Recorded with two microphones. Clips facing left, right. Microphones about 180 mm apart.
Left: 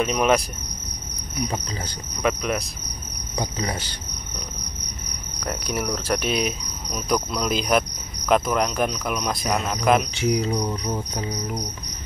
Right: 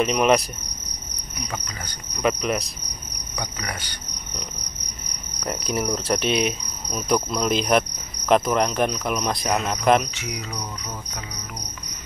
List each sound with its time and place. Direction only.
0.0 s cricket: centre (ahead or behind)
2.2 s cricket: centre (ahead or behind)
3.3 s cricket: 25° left (ahead or behind)
5.4 s cricket: centre (ahead or behind)
10.1 s cricket: 30° left (ahead or behind)